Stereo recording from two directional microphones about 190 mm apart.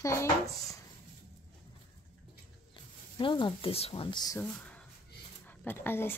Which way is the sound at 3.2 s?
25° left (ahead or behind).